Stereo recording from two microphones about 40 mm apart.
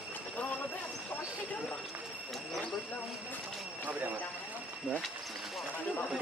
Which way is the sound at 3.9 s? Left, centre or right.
Right.